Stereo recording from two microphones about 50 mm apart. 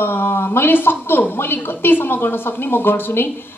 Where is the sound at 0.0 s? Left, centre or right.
Left.